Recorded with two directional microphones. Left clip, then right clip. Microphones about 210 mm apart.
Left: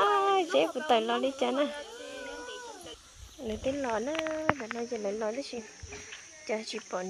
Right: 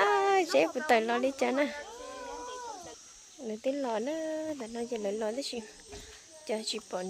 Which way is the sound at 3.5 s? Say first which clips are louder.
Left 2 dB; centre (ahead or behind).